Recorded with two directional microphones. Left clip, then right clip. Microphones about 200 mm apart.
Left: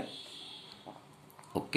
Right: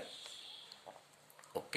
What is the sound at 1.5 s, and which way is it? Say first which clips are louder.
Oink: left 6 dB; 15° right (ahead or behind).